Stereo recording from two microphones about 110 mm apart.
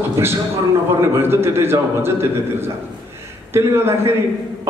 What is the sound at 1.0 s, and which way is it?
A man's voice, 25° right (ahead or behind).